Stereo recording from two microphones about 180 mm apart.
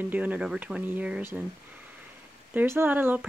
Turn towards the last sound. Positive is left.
turn(degrees=-10)  # may be behind; listen again after turning